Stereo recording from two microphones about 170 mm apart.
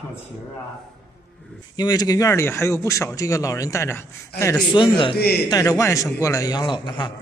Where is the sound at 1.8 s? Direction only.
25° left (ahead or behind).